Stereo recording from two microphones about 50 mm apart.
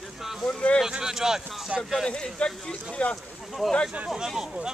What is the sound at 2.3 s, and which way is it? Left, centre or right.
Speech, centre.